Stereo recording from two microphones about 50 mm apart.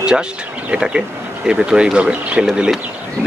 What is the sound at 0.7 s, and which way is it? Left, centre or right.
Speech, centre.